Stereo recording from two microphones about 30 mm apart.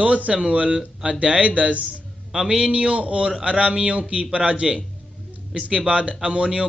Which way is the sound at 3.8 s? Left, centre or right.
Right.